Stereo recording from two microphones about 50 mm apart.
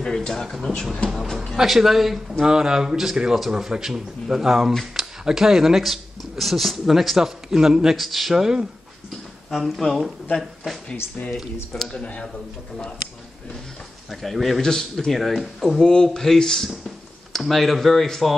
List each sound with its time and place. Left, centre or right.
0.0 s a man's voice: centre
11.9 s speech: centre
14.2 s speech: centre
15.9 s speech: centre